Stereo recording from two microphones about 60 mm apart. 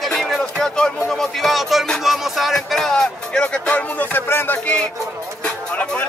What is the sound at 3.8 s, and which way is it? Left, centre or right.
Speech, left.